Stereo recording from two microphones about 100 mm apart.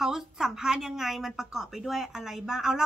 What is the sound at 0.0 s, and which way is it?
A woman's voice, 5° right (ahead or behind).